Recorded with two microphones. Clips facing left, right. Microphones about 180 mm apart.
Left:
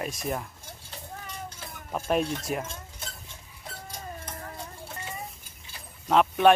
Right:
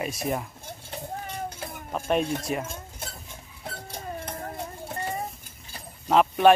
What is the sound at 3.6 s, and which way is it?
Bird, 60° right (ahead or behind).